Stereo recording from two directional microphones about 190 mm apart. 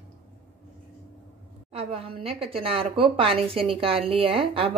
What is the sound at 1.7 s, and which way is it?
A woman's voice, 30° right (ahead or behind).